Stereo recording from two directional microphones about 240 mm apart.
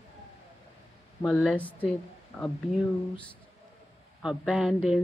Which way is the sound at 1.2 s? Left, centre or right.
Centre.